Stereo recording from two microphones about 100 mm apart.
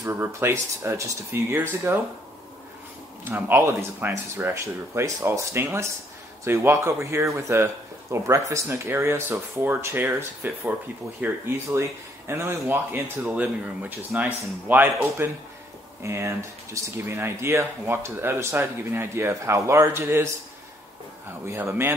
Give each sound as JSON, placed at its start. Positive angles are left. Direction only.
{"t": 0.0, "sound": "speech", "side_deg": -25}
{"t": 3.3, "sound": "speech", "side_deg": -20}
{"t": 13.2, "sound": "speech", "side_deg": -15}
{"t": 21.5, "sound": "speech", "side_deg": -25}